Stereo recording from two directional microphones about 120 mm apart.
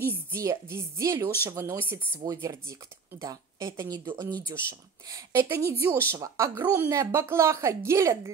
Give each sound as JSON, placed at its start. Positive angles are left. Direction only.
{"t": 0.0, "sound": "a woman's voice", "side_deg": -20}
{"t": 5.1, "sound": "a woman's voice", "side_deg": -25}